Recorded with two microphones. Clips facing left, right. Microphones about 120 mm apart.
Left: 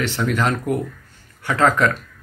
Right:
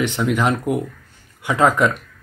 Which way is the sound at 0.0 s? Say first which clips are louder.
Right 2 dB; 15° right (ahead or behind).